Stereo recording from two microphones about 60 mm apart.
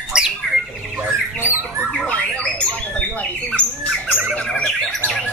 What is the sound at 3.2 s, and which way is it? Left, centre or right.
Squawk, centre.